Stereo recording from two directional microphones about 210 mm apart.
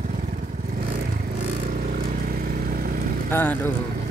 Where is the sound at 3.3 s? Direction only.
10° left (ahead or behind).